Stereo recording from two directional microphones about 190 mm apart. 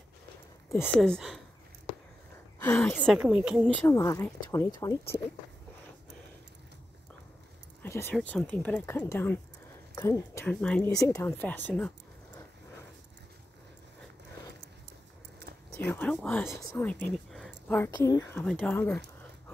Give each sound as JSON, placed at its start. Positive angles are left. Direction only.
{"t": 0.7, "sound": "speech", "side_deg": 10}
{"t": 2.6, "sound": "speech", "side_deg": 10}
{"t": 3.2, "sound": "speech", "side_deg": -5}
{"t": 3.8, "sound": "speech", "side_deg": 15}
{"t": 7.8, "sound": "speech", "side_deg": 10}
{"t": 11.0, "sound": "speech", "side_deg": 15}
{"t": 15.8, "sound": "speech", "side_deg": 5}